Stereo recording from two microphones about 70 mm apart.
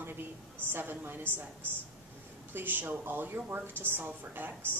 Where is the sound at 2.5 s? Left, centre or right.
Right.